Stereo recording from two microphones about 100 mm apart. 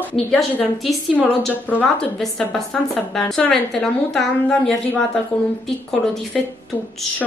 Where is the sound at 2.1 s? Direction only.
5° left (ahead or behind).